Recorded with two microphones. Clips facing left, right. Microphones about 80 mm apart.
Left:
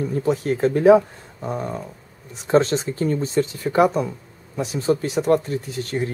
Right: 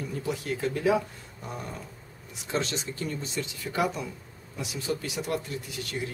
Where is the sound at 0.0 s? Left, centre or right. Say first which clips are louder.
Left 11 dB; left.